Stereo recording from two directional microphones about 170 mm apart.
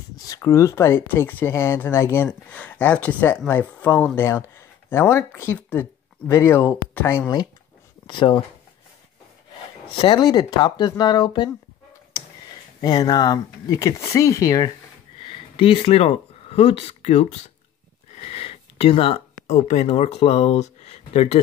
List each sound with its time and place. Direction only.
0.3 s speech: 20° left (ahead or behind)
8.1 s speech: 30° left (ahead or behind)
9.8 s speech: 30° left (ahead or behind)
12.8 s speech: 25° left (ahead or behind)
15.1 s a sound: 30° left (ahead or behind)